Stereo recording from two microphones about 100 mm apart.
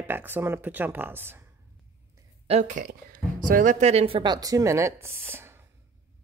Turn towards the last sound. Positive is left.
turn(degrees=-25)  # may be behind; listen again after turning